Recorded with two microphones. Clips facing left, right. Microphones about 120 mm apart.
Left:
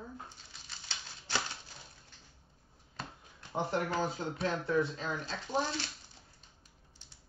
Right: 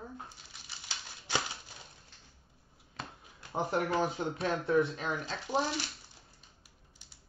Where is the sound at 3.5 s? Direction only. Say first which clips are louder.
Right 2 dB; 15° right (ahead or behind).